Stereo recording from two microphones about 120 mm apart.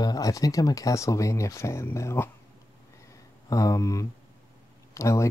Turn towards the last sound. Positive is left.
turn(degrees=25)  # may be behind; listen again after turning